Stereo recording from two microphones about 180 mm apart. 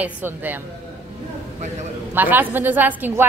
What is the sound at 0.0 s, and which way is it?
Speech, 10° right (ahead or behind).